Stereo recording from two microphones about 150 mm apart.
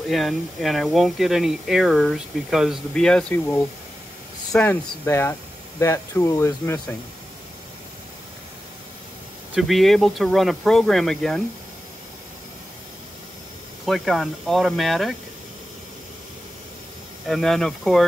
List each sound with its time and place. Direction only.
0.1 s speech: centre (ahead or behind); by 7.0 s 15° left (ahead or behind)
9.6 s speech: centre (ahead or behind)
13.8 s speech: centre (ahead or behind)
17.3 s speech: centre (ahead or behind)